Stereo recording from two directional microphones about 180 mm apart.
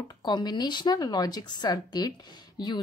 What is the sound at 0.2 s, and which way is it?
Speech, 25° left (ahead or behind).